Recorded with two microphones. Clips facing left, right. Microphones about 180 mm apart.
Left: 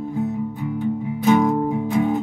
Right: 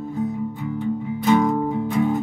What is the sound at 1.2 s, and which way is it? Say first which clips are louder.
Music: left 1 dB; 10° left (ahead or behind).